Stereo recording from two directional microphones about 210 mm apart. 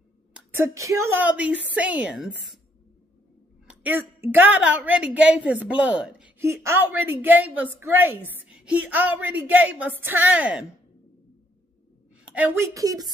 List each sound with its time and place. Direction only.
0.3 s a woman's voice: 15° right (ahead or behind)
3.6 s a woman's voice: 10° right (ahead or behind)
12.4 s a woman's voice: 15° right (ahead or behind)